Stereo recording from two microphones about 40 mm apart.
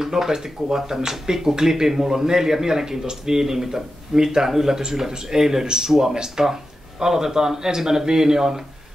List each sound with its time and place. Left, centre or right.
0.0 s speech: centre